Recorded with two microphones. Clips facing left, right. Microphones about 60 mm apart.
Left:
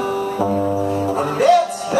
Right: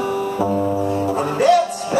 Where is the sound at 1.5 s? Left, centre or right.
Left.